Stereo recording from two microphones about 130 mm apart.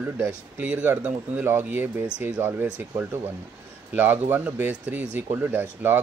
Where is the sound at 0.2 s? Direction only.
10° right (ahead or behind).